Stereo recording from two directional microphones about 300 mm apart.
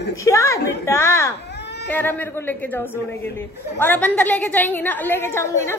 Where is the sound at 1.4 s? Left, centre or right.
Left.